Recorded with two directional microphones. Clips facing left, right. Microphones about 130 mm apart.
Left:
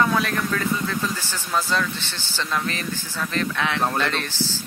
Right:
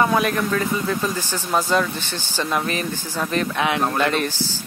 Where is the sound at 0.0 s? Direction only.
20° right (ahead or behind).